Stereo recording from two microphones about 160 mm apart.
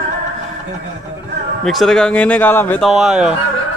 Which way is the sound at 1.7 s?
Centre (ahead or behind).